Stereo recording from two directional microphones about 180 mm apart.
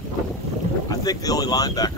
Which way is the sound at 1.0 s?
20° left (ahead or behind).